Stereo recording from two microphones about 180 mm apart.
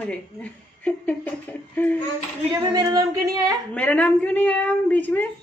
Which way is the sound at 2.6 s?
20° right (ahead or behind).